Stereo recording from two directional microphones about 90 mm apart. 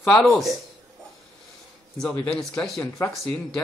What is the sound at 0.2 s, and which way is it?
Speech, centre (ahead or behind).